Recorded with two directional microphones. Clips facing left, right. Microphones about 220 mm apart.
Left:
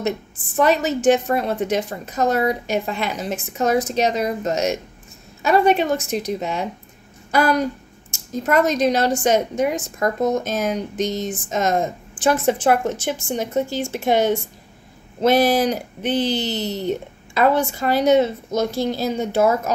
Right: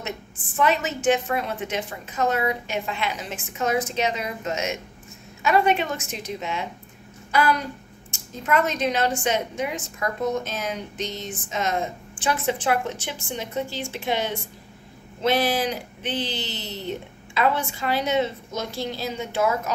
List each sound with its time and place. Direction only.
0.6 s a woman's voice: 40° left (ahead or behind)